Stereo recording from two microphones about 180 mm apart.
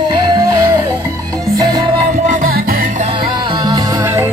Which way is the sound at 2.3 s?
50° right (ahead or behind).